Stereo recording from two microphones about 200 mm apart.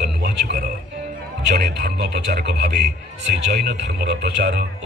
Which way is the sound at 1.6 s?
50° right (ahead or behind).